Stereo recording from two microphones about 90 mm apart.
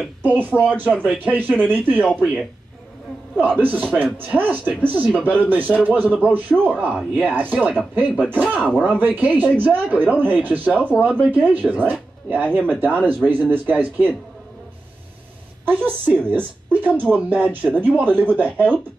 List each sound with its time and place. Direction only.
0.2 s speech: 20° right (ahead or behind)
3.5 s speech: 20° right (ahead or behind)
6.7 s speech: 10° right (ahead or behind)
8.5 s speech: 10° left (ahead or behind)
9.0 s speech: 20° right (ahead or behind)
15.6 s speech: 20° right (ahead or behind)